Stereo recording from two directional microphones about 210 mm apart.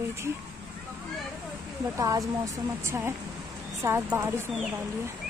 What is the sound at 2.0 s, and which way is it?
Speech, 15° right (ahead or behind).